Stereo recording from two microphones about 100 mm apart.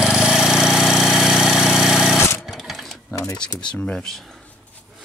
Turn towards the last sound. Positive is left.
turn(degrees=5)  # may be behind; listen again after turning